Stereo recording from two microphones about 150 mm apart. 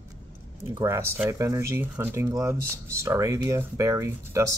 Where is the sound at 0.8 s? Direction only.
15° right (ahead or behind).